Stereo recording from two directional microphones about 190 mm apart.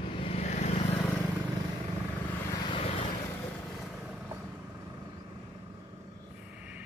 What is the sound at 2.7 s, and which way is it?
Vehicle, 30° left (ahead or behind).